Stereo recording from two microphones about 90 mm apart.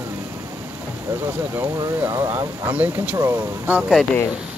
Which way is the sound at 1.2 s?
25° right (ahead or behind).